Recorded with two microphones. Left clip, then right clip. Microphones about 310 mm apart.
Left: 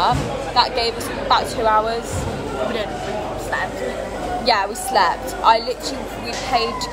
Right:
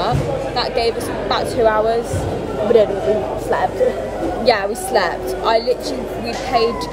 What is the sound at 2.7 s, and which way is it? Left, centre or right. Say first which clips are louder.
Speech: right 12 dB; right.